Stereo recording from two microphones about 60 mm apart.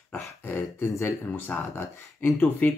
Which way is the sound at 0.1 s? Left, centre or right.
Left.